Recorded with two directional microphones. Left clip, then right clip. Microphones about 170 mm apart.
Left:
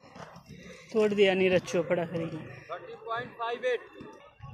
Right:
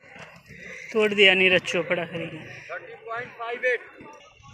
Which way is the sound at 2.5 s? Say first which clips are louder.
Right 4 dB; 55° left (ahead or behind).